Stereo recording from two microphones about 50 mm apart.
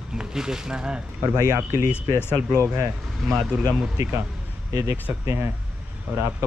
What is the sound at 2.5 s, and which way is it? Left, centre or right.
Speech, right.